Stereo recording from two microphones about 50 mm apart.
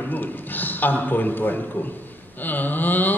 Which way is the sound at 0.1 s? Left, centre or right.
Left.